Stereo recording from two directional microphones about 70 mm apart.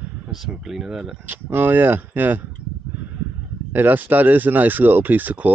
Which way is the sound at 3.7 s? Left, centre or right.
Right.